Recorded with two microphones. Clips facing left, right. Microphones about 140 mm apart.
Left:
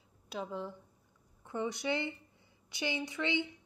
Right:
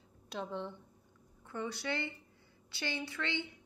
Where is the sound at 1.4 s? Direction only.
20° left (ahead or behind).